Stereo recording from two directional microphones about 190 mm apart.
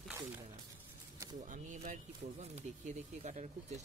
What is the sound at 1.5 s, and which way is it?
Speech, 40° right (ahead or behind).